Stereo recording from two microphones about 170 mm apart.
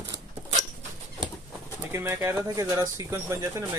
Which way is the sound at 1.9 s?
15° right (ahead or behind).